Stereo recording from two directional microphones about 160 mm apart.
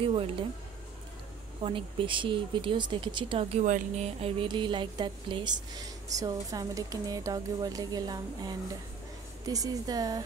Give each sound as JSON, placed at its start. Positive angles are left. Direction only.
{"t": 0.0, "sound": "speech", "side_deg": -35}
{"t": 1.6, "sound": "speech", "side_deg": -35}
{"t": 3.6, "sound": "speech", "side_deg": -50}
{"t": 4.2, "sound": "speech", "side_deg": -30}